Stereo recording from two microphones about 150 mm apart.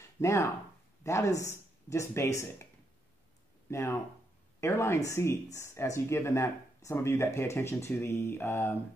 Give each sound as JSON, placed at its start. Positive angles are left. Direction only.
{"t": 0.0, "sound": "a sound", "side_deg": 20}
{"t": 1.0, "sound": "speech", "side_deg": 20}
{"t": 3.7, "sound": "speech", "side_deg": 15}